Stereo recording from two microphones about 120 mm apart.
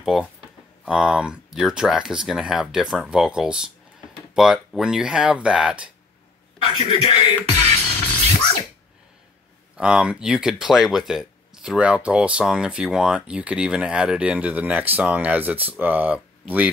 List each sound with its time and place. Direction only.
0.0 s speech: 5° right (ahead or behind)
7.6 s music: 70° right (ahead or behind)
9.8 s speech: 5° right (ahead or behind)